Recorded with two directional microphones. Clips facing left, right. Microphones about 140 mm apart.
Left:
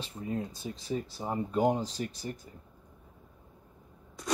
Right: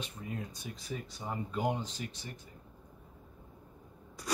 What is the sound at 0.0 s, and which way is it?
Speech, 30° left (ahead or behind).